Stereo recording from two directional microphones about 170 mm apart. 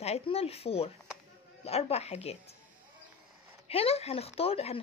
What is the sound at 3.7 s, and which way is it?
Speech, 35° left (ahead or behind).